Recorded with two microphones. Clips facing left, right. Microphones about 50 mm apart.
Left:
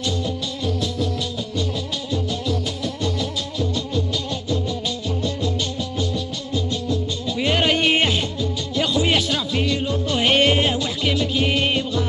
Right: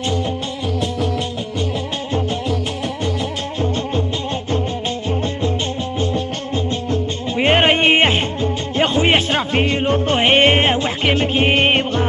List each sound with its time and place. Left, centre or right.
5.9 s music: right